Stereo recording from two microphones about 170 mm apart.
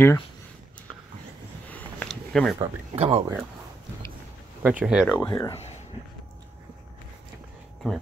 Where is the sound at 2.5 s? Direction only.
35° right (ahead or behind).